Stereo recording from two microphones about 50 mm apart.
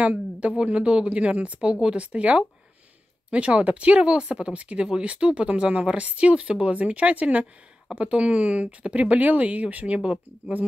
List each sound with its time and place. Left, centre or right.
0.0 s speech: right